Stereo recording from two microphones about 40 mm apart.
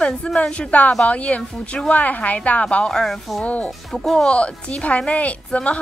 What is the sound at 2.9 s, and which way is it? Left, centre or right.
Speech, centre.